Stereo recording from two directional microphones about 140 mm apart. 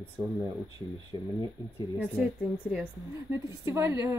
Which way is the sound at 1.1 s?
30° left (ahead or behind).